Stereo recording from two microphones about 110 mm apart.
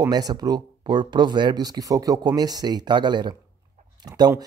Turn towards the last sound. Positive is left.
turn(degrees=-35)  # may be behind; listen again after turning